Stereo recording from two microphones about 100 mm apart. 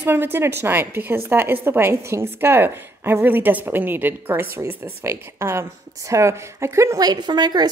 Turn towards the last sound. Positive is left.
turn(degrees=-45)  # may be behind; listen again after turning